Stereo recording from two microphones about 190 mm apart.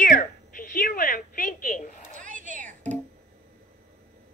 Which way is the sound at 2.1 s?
40° right (ahead or behind).